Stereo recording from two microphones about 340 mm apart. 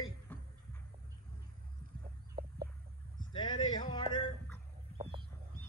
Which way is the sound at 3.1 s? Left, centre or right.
Centre.